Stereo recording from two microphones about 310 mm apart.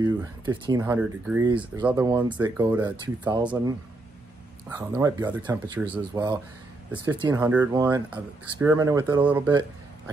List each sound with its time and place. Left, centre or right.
0.0 s speech: centre